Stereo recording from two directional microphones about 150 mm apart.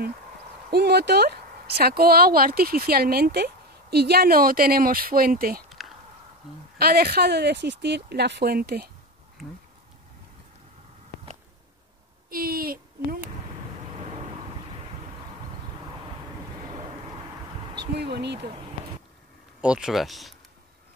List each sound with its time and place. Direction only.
0.7 s speech: 90° right; by 5.6 s 75° right (ahead or behind)
5.7 s a sound: centre (ahead or behind)
6.8 s speech: 90° right
9.4 s speech: centre (ahead or behind)
12.3 s a sound: 80° right
17.7 s speech: 90° right
19.6 s speech: 5° right (ahead or behind)